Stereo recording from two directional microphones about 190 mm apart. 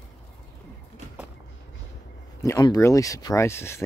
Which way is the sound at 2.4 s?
20° left (ahead or behind).